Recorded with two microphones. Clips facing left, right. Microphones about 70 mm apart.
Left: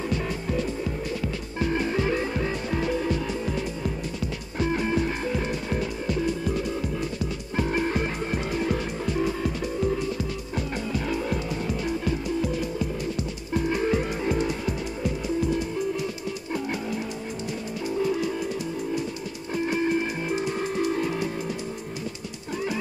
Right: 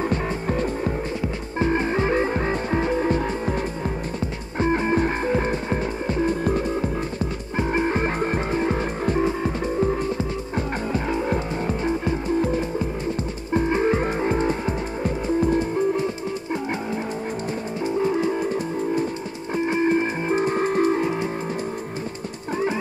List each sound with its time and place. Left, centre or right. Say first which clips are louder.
0.1 s music: right 3 dB; right
7.5 s music: right 3 dB; right
17.8 s music: right 4 dB; right